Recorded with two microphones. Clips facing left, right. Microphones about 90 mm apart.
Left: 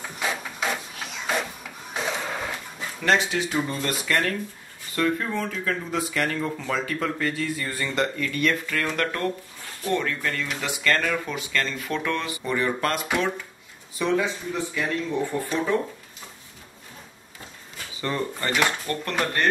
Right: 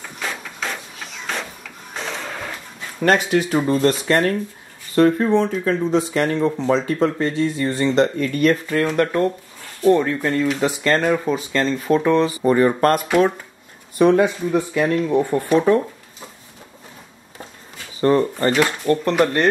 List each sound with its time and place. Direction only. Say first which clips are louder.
0.2 s printer: even; 10° left (ahead or behind)
3.0 s speech: right 6 dB; 50° right (ahead or behind)
5.7 s speech: right 9 dB; 25° right (ahead or behind)
8.8 s speech: right 9 dB; 20° right (ahead or behind); by 13.0 s 40° right (ahead or behind)
13.9 s speech: right 9 dB; 55° right (ahead or behind)
18.0 s speech: right 11 dB; 40° right (ahead or behind)
18.9 s speech: right 11 dB; 30° right (ahead or behind)